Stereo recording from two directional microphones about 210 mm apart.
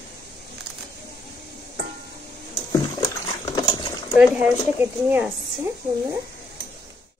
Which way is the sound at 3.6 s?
20° left (ahead or behind).